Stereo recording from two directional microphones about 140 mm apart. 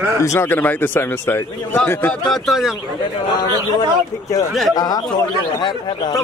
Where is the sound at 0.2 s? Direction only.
20° left (ahead or behind).